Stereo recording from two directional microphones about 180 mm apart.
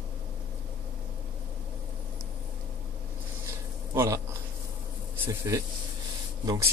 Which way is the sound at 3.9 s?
15° right (ahead or behind).